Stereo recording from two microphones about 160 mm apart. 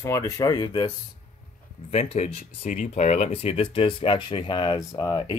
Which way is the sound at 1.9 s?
40° left (ahead or behind).